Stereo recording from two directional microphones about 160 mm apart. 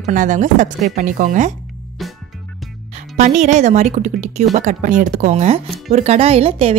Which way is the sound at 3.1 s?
45° right (ahead or behind).